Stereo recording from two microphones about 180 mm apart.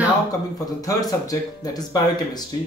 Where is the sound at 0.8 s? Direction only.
20° left (ahead or behind).